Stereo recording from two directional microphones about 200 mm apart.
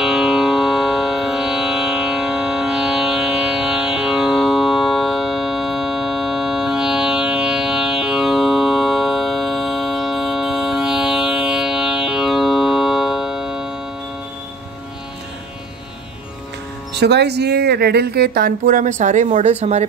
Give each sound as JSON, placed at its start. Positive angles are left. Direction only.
{"t": 0.0, "sound": "music", "side_deg": 0}
{"t": 16.9, "sound": "speech", "side_deg": -55}